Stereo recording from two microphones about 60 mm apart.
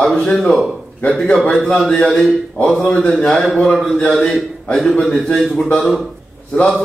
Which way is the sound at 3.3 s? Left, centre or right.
Centre.